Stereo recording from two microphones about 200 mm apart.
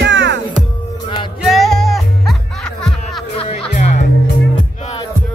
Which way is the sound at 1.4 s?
Centre (ahead or behind).